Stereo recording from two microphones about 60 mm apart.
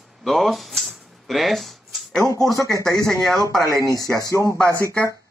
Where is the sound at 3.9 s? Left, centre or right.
Left.